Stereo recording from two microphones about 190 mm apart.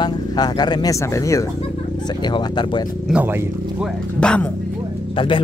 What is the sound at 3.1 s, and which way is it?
Speech, 10° right (ahead or behind).